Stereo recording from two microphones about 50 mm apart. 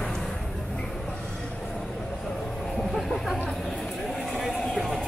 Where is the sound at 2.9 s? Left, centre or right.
Centre.